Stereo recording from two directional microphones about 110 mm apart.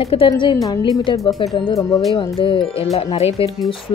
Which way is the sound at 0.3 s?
40° left (ahead or behind).